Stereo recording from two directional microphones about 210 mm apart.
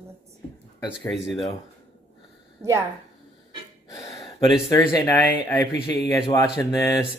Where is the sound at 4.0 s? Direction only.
15° left (ahead or behind).